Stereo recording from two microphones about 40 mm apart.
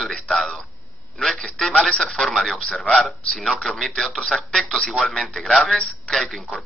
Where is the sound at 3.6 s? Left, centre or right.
Centre.